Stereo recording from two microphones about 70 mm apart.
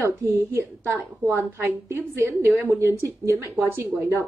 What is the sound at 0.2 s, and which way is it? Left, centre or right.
A woman's voice, right.